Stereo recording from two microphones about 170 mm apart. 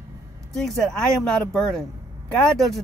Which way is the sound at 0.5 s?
Centre (ahead or behind).